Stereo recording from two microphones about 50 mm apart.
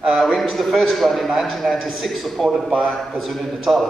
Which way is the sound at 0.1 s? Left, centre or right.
Centre.